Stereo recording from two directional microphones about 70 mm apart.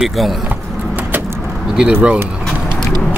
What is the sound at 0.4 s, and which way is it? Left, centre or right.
Vehicle, centre.